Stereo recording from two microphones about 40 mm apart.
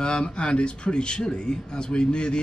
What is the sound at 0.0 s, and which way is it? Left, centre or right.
Speech, left.